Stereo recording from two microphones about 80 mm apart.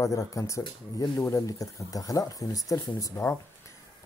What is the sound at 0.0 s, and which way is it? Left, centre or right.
Speech, left.